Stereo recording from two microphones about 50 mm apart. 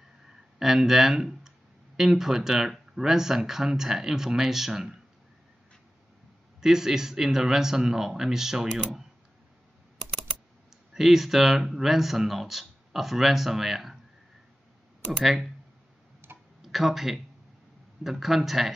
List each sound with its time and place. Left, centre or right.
0.6 s speech: centre
6.6 s speech: centre
10.9 s speech: centre
15.2 s speech: centre
16.2 s tick-tock: right
16.6 s speech: centre